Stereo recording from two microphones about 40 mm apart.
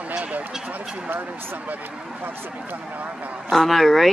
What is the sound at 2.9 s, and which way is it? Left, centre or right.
Speech, right.